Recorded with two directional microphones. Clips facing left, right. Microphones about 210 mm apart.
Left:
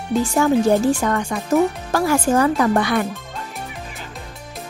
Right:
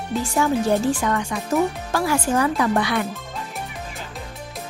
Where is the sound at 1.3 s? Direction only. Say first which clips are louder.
Left 4 dB; 45° left (ahead or behind).